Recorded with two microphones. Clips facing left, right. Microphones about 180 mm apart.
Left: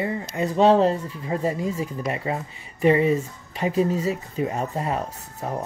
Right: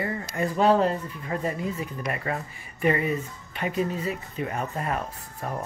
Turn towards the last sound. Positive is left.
turn(degrees=25)  # may be behind; listen again after turning